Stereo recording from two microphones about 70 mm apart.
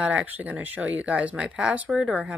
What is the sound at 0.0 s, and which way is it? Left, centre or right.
Speech, right.